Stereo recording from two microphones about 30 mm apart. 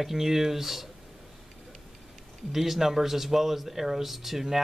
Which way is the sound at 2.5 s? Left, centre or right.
Centre.